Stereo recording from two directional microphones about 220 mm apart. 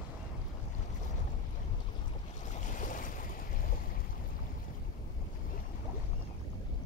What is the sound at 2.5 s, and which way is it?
Boat, 35° left (ahead or behind).